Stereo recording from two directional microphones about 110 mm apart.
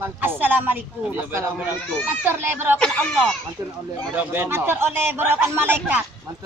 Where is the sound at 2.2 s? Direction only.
20° right (ahead or behind).